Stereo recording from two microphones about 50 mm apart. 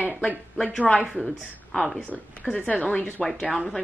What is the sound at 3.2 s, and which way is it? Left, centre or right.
Speech, centre.